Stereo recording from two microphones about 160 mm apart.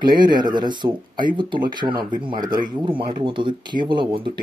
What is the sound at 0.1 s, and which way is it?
Speech, 30° right (ahead or behind).